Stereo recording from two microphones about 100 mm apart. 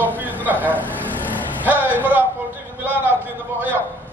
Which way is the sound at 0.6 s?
15° left (ahead or behind).